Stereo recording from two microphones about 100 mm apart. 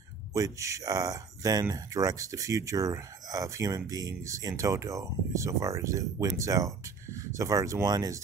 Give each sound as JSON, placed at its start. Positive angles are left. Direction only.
{"t": 0.3, "sound": "speech", "side_deg": -35}